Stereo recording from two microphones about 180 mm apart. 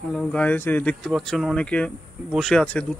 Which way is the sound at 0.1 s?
5° left (ahead or behind).